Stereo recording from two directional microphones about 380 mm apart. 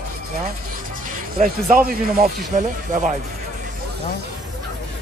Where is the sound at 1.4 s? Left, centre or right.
Right.